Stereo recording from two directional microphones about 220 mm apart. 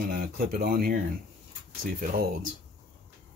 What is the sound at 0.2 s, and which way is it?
Speech, 40° right (ahead or behind).